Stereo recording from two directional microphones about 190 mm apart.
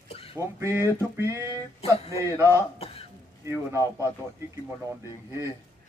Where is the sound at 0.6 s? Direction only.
15° right (ahead or behind).